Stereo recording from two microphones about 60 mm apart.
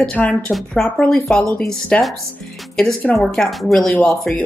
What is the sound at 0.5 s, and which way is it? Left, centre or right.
A woman's voice, centre.